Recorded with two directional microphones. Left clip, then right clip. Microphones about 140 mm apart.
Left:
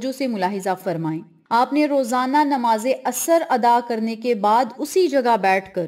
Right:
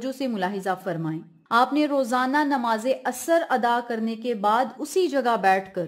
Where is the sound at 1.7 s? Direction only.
15° left (ahead or behind).